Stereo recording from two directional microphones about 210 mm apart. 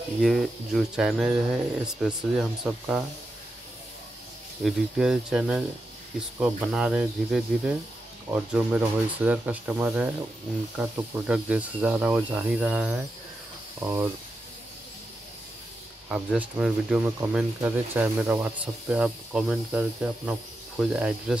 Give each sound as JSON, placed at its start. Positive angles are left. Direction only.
{"t": 0.2, "sound": "speech", "side_deg": 0}
{"t": 4.6, "sound": "speech", "side_deg": 0}
{"t": 16.1, "sound": "speech", "side_deg": -5}